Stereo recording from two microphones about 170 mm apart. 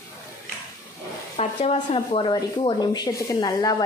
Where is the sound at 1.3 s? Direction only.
35° left (ahead or behind).